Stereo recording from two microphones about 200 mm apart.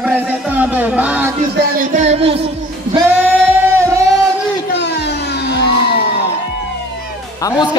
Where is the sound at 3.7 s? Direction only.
15° right (ahead or behind).